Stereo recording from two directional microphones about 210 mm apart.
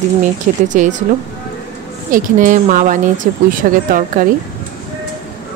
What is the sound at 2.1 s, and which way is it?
Speech, 40° right (ahead or behind).